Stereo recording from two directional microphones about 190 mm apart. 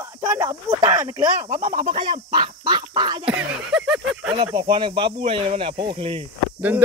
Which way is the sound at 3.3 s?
5° right (ahead or behind).